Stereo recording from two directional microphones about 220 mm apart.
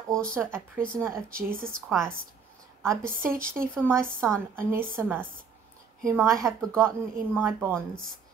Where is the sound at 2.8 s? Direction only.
15° right (ahead or behind).